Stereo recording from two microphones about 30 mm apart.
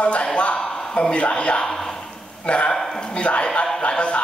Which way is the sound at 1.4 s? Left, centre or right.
Left.